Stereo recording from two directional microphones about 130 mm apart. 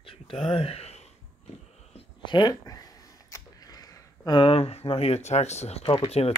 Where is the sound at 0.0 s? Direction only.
45° left (ahead or behind).